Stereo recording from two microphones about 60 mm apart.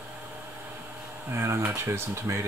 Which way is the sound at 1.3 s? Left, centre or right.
Right.